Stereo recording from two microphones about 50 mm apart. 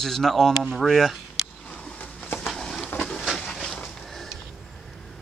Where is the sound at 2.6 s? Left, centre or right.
Centre.